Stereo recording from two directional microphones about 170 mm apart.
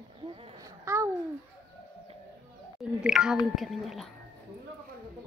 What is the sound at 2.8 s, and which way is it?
Speech, 5° right (ahead or behind).